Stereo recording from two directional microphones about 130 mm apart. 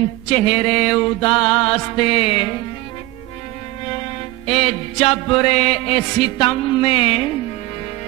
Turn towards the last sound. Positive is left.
turn(degrees=45)  # may be behind; listen again after turning